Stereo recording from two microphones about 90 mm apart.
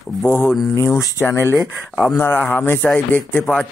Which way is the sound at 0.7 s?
35° left (ahead or behind).